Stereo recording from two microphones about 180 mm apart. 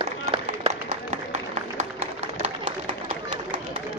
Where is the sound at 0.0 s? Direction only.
30° right (ahead or behind).